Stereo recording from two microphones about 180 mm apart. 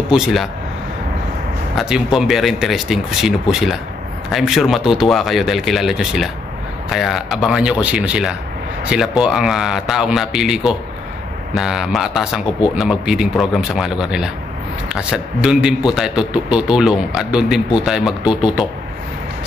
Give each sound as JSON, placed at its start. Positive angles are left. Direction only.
{"t": 0.1, "sound": "a man's voice", "side_deg": 0}
{"t": 1.8, "sound": "a man's voice", "side_deg": 0}